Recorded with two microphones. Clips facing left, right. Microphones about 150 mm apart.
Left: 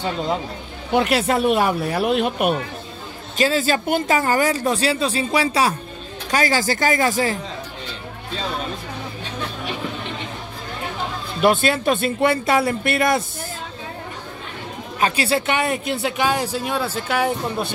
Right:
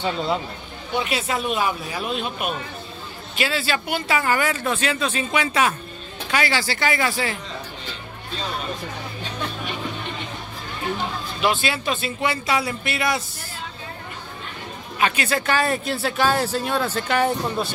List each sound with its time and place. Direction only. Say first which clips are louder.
0.9 s speech: left 6 dB; 65° left (ahead or behind)
3.3 s a woman's voice: left 5 dB; 40° left (ahead or behind)
11.4 s speech: left 6 dB; 50° left (ahead or behind)
15.0 s speech: left 2 dB; 35° left (ahead or behind); by 17.6 s 10° left (ahead or behind)